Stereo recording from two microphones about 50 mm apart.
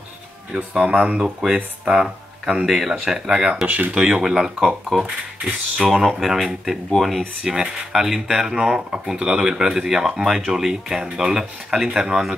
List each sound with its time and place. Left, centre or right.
0.6 s speech: right
3.6 s speech: right
3.9 s speech: centre